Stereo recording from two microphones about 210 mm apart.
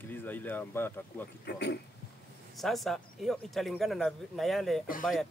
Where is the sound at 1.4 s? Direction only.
50° left (ahead or behind).